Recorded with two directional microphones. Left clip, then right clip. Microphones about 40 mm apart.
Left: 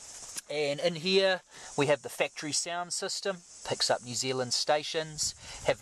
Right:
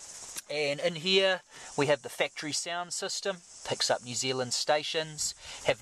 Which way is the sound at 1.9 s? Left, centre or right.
Left.